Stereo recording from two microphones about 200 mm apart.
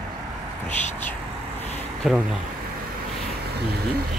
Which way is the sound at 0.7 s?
35° left (ahead or behind).